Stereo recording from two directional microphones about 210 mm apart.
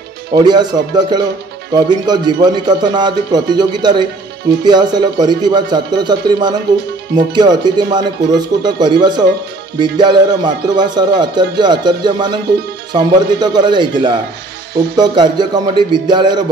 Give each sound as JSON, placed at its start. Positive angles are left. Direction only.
{"t": 0.3, "sound": "speech", "side_deg": -20}
{"t": 15.0, "sound": "speech", "side_deg": -20}